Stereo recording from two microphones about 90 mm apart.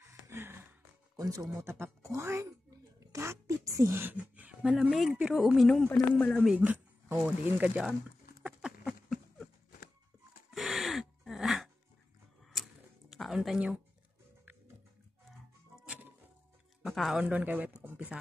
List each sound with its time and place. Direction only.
0.3 s gasp: 25° right (ahead or behind)
1.1 s speech: 45° right (ahead or behind)
1.6 s speech: 30° right (ahead or behind)
3.0 s a sound: 35° right (ahead or behind)
3.9 s speech: 20° right (ahead or behind); by 5.9 s centre (ahead or behind)
6.1 s speech: 15° left (ahead or behind)
6.4 s speech: 15° right (ahead or behind)
8.5 s a sound: 10° right (ahead or behind)
8.8 s a sound: centre (ahead or behind)
10.5 s gasp: centre (ahead or behind)
13.1 s music: centre (ahead or behind)
16.8 s speech: centre (ahead or behind)
17.4 s speech: 20° right (ahead or behind)